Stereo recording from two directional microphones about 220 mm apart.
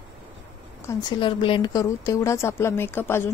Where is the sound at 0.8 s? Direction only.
20° left (ahead or behind).